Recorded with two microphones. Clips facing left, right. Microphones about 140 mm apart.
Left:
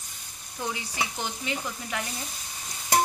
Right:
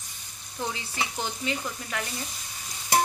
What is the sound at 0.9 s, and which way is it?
Speech, 15° left (ahead or behind).